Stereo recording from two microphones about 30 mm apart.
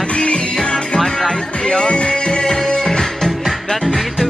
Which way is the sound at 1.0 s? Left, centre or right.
Left.